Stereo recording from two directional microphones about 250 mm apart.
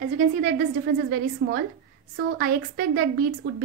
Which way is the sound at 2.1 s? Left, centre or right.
Right.